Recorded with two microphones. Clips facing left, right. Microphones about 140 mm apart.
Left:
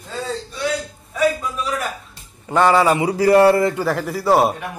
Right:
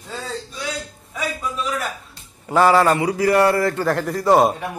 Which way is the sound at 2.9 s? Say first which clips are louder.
Left 3 dB; 25° left (ahead or behind).